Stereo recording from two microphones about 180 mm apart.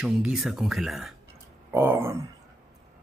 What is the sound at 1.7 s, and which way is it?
Speech, 10° right (ahead or behind).